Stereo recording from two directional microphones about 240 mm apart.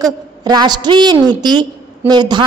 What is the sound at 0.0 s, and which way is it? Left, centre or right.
A woman's voice, centre.